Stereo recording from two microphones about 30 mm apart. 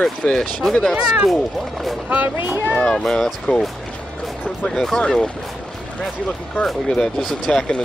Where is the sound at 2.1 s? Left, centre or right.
Right.